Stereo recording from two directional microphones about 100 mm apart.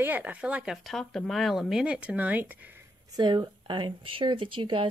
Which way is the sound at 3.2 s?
50° right (ahead or behind).